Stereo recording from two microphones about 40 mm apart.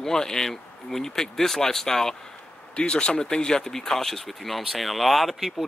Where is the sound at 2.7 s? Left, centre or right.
Left.